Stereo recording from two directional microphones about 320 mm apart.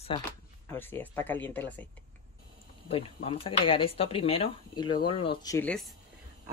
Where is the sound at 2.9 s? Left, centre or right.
Centre.